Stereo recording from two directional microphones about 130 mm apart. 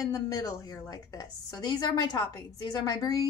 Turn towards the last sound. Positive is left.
turn(degrees=30)  # may be behind; listen again after turning